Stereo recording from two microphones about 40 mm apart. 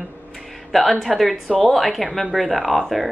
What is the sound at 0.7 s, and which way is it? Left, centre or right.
Speech, centre.